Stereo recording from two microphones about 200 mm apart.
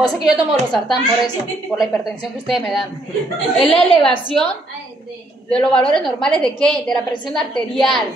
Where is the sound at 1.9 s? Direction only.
Centre (ahead or behind).